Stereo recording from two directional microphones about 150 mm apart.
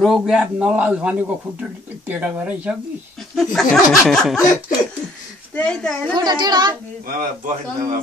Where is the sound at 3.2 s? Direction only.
Centre (ahead or behind).